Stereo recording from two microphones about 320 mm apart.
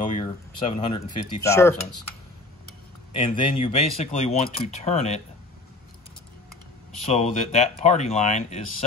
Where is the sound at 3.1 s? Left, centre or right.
Centre.